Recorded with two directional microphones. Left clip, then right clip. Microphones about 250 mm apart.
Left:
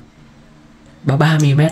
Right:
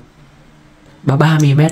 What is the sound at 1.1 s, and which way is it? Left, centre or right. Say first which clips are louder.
Speech: right 2 dB; centre.